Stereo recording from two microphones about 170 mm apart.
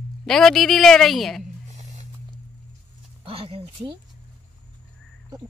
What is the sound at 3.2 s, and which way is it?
Speech, 35° right (ahead or behind).